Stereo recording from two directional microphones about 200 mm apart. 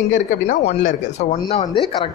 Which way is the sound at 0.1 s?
40° left (ahead or behind).